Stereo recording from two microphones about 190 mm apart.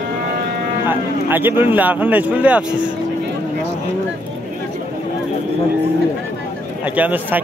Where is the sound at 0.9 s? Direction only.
10° right (ahead or behind).